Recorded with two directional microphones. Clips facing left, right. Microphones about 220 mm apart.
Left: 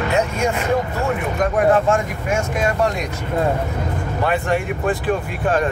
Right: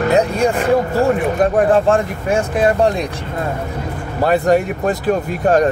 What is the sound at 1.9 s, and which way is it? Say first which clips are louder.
Speech: right 4 dB; 35° right (ahead or behind).